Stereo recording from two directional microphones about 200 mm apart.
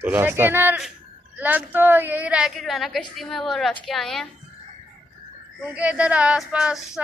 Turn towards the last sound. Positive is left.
turn(degrees=-5)  # may be behind; listen again after turning